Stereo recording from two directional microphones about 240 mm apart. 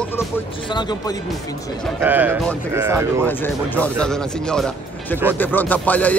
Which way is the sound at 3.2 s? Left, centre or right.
Centre.